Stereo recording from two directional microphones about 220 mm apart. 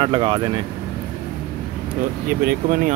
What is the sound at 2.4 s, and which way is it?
Speech, 40° right (ahead or behind).